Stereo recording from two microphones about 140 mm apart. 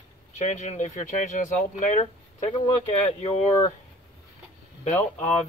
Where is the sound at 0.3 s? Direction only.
60° left (ahead or behind).